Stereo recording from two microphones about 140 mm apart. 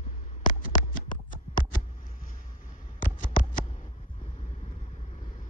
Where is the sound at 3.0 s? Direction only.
75° left (ahead or behind).